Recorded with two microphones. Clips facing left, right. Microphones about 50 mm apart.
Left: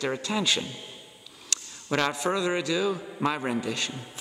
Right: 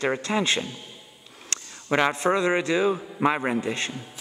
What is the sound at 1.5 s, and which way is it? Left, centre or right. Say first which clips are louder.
A man's voice: right 4 dB; right.